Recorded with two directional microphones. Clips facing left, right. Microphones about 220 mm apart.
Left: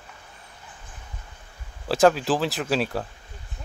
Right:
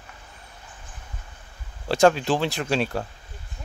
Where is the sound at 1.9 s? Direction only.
Centre (ahead or behind).